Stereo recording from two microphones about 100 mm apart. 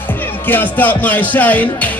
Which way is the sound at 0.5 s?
20° left (ahead or behind).